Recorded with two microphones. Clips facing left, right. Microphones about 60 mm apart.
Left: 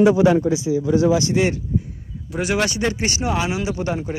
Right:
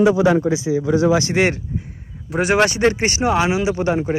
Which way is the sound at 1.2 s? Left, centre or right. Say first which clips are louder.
Right 2 dB; right.